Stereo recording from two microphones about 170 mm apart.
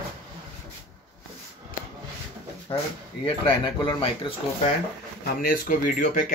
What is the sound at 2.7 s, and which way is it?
Speech, 30° left (ahead or behind).